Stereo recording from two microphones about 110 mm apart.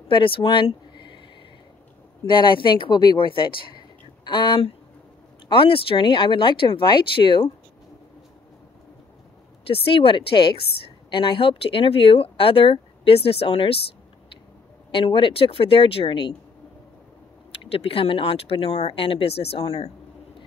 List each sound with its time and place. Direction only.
0.1 s speech: 50° left (ahead or behind)
2.2 s speech: 45° left (ahead or behind)
9.8 s a woman's voice: 55° left (ahead or behind)
14.9 s speech: 50° left (ahead or behind)
17.6 s a woman's voice: 55° left (ahead or behind)